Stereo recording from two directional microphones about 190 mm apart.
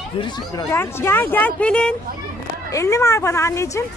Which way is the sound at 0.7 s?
10° left (ahead or behind).